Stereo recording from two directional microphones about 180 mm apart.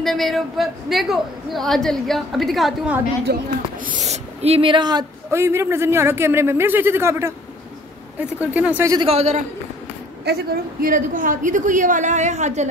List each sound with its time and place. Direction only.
0.0 s a woman's voice: centre (ahead or behind)
3.3 s speech: 55° right (ahead or behind)
3.8 s speech: 45° right (ahead or behind); by 8.9 s 10° right (ahead or behind)
8.9 s a man's voice: 35° right (ahead or behind)
10.2 s a woman's voice: 60° right (ahead or behind); by 12.6 s 40° right (ahead or behind)